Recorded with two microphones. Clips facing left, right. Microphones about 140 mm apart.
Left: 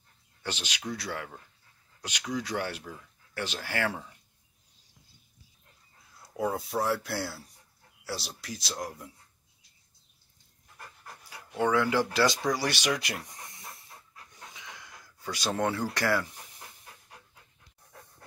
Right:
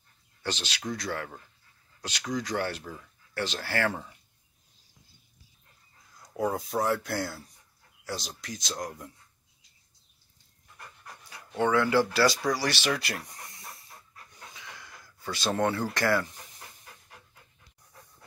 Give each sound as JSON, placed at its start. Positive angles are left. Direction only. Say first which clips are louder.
{"t": 0.4, "sound": "speech", "louder": "right 2 dB", "side_deg": 10}
{"t": 6.2, "sound": "speech", "louder": "right 1 dB", "side_deg": 0}
{"t": 11.2, "sound": "speech", "louder": "right 1 dB", "side_deg": 10}
{"t": 14.5, "sound": "pant", "louder": "right 1 dB", "side_deg": 20}
{"t": 15.3, "sound": "speech", "louder": "right 2 dB", "side_deg": 10}